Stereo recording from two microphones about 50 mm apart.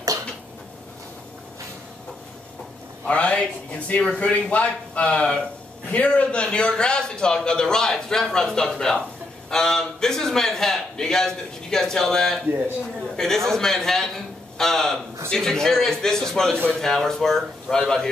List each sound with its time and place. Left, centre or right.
3.1 s a man's voice: left